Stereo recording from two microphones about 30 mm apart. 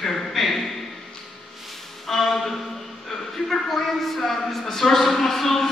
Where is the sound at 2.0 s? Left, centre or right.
Centre.